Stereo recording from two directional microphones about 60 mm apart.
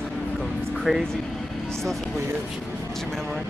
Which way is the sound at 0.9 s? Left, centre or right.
Centre.